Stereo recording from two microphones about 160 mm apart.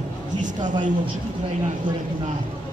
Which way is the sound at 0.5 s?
30° right (ahead or behind).